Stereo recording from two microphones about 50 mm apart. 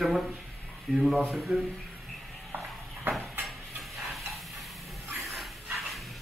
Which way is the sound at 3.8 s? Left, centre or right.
Centre.